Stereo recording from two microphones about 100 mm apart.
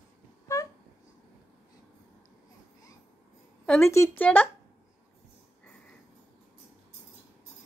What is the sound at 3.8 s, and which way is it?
Speech, 30° left (ahead or behind).